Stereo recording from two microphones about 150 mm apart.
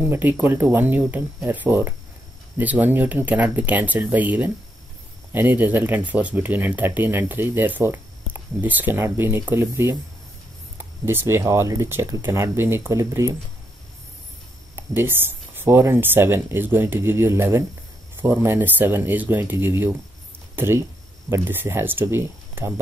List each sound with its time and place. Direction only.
0.0 s speech: 10° right (ahead or behind)
11.1 s speech: 15° right (ahead or behind)
14.8 s speech: 15° right (ahead or behind)